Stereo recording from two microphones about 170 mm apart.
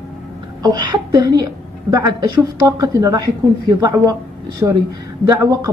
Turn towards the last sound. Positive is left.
turn(degrees=-20)  # may be behind; listen again after turning